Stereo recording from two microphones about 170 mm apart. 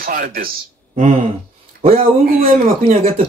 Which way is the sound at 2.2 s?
60° right (ahead or behind).